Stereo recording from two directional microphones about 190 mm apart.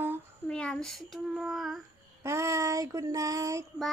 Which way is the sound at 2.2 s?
15° right (ahead or behind).